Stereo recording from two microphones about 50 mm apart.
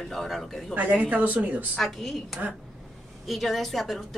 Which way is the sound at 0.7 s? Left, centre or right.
Right.